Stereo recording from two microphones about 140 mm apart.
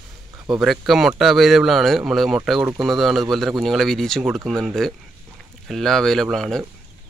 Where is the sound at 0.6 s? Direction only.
Centre (ahead or behind).